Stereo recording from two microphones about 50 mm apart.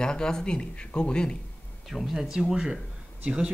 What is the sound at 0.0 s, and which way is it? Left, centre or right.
Speech, centre.